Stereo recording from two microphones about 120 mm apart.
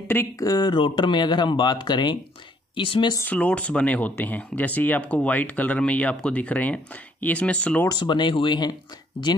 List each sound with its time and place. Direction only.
0.4 s speech: 35° left (ahead or behind)
3.2 s speech: 10° left (ahead or behind)
7.9 s speech: 40° left (ahead or behind)